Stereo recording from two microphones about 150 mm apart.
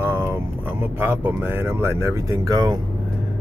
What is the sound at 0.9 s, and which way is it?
Speech, 15° right (ahead or behind).